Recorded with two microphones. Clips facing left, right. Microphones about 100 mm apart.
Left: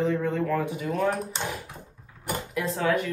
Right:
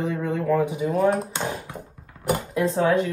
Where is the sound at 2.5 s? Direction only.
30° right (ahead or behind).